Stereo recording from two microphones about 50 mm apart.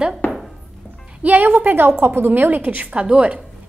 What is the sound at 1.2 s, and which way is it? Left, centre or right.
A woman's voice, right.